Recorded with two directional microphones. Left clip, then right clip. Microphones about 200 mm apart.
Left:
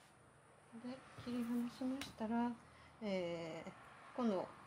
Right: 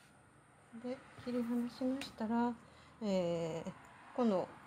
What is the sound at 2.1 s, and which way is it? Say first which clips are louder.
A woman's voice: right 3 dB; 25° right (ahead or behind).